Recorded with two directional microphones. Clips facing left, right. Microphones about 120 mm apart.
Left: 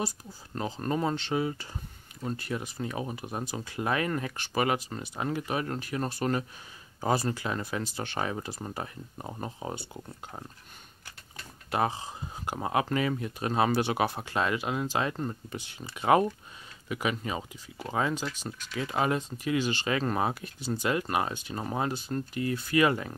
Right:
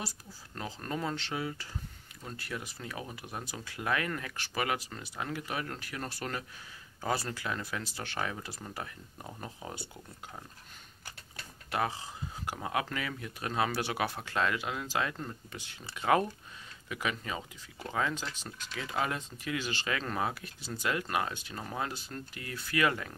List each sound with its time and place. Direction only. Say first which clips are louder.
0.6 s speech: left 7 dB; 25° left (ahead or behind)
11.7 s speech: left 4 dB; 25° left (ahead or behind)